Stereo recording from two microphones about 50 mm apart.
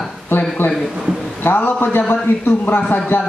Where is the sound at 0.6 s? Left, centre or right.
Left.